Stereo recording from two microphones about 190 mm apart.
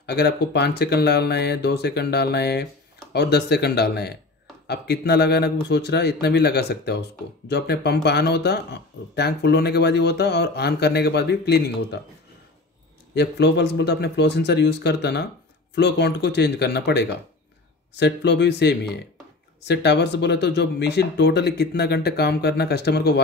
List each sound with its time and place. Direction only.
0.0 s speech: 60° left (ahead or behind)
13.1 s speech: 60° left (ahead or behind)